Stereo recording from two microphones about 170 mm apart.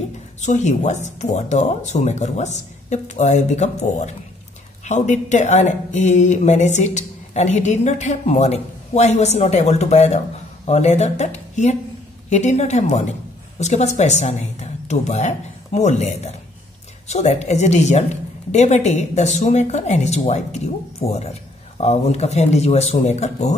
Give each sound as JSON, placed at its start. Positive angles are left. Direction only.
{"t": 0.4, "sound": "speech", "side_deg": 45}